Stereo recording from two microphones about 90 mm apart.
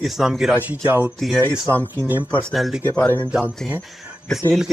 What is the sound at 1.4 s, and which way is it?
Speech, 20° left (ahead or behind).